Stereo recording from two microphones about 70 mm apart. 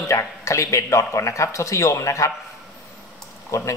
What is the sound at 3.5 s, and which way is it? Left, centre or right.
Speech, left.